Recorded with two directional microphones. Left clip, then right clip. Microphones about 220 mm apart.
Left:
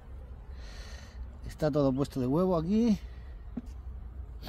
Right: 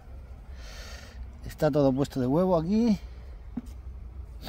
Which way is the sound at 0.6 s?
25° right (ahead or behind).